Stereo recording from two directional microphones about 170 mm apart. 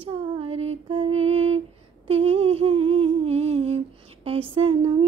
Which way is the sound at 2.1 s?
35° right (ahead or behind).